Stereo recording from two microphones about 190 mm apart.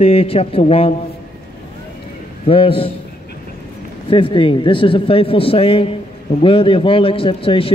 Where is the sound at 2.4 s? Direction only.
30° left (ahead or behind).